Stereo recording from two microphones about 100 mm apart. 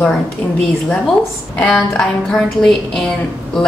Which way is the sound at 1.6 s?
5° left (ahead or behind).